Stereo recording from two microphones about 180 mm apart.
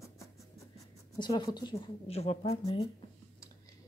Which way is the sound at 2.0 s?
35° left (ahead or behind).